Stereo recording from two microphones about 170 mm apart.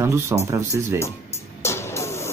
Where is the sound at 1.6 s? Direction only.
15° left (ahead or behind).